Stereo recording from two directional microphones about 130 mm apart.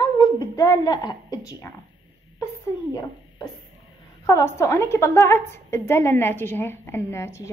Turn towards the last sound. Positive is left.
turn(degrees=20)  # may be behind; listen again after turning